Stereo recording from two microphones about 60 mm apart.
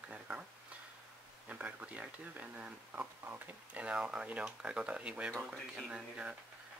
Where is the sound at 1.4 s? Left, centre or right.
Right.